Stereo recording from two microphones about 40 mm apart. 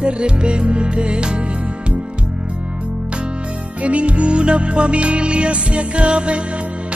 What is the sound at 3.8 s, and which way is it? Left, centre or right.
Music, right.